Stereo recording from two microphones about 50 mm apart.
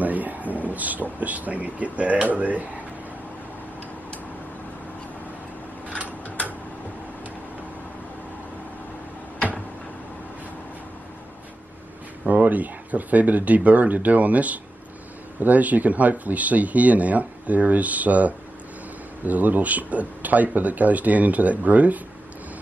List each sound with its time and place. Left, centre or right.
0.0 s speech: right
12.3 s speech: right